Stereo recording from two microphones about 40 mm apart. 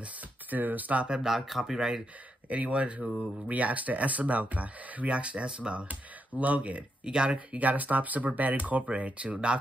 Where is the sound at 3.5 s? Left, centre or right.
Right.